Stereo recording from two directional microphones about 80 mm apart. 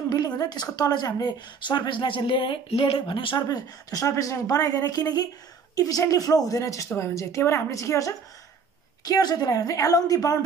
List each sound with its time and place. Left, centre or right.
0.1 s a woman's voice: left
3.4 s a woman's voice: left
9.0 s a woman's voice: left